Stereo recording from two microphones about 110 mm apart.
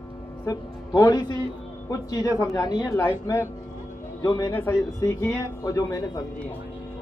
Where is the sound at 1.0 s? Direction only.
35° left (ahead or behind).